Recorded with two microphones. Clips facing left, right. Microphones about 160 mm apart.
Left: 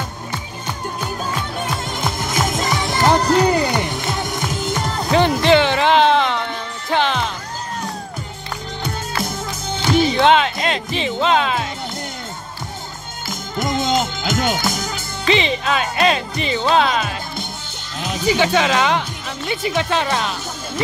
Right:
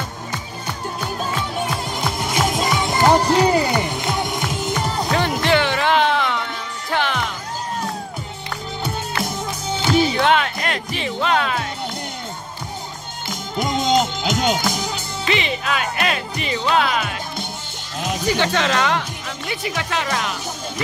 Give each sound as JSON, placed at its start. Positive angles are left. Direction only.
{"t": 2.0, "sound": "music", "side_deg": 0}
{"t": 5.4, "sound": "music", "side_deg": 25}
{"t": 9.8, "sound": "music", "side_deg": -10}
{"t": 10.1, "sound": "music", "side_deg": 25}
{"t": 13.6, "sound": "music", "side_deg": 0}
{"t": 15.2, "sound": "music", "side_deg": 25}
{"t": 18.2, "sound": "speech", "side_deg": 10}